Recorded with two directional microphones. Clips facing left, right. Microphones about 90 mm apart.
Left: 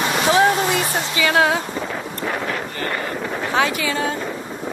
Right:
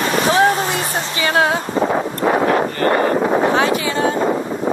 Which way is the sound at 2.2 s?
45° right (ahead or behind).